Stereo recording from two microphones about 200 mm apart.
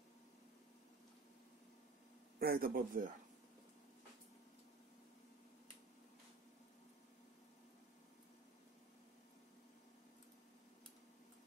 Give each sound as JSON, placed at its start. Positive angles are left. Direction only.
{"t": 2.3, "sound": "a man's voice", "side_deg": -50}